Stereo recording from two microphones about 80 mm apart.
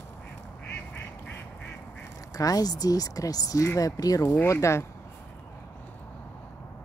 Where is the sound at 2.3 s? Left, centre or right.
Left.